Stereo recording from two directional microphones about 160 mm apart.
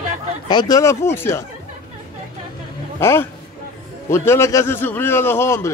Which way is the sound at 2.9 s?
15° left (ahead or behind).